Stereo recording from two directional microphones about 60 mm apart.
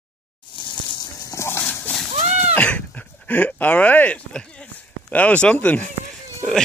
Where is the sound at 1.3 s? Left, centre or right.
Left.